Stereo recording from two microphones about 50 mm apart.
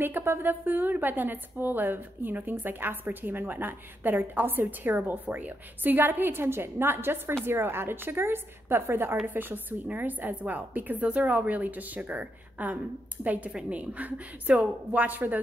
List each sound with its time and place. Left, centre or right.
0.0 s a woman's voice: right
13.5 s a woman's voice: centre
13.7 s a woman's voice: right